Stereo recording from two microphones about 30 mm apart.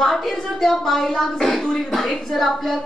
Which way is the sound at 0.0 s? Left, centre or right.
Centre.